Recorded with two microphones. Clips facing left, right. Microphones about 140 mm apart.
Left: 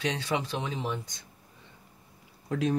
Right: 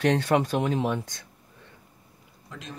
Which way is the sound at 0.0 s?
50° right (ahead or behind).